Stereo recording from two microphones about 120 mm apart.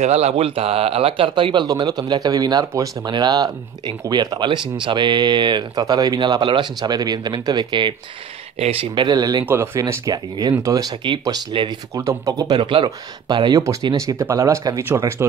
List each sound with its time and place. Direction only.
0.0 s speech: 65° right (ahead or behind); by 7.9 s 40° right (ahead or behind)
8.5 s speech: 55° right (ahead or behind)
8.9 s speech: 40° right (ahead or behind)
9.5 s speech: 20° right (ahead or behind)